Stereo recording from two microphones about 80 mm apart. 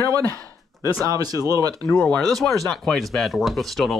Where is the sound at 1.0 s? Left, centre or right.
Right.